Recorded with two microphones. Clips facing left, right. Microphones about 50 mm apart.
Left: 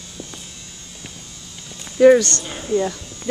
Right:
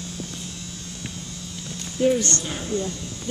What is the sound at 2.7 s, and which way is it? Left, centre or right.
Speech, left.